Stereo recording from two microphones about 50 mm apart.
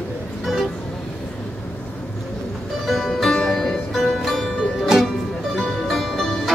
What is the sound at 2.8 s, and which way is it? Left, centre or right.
Music, centre.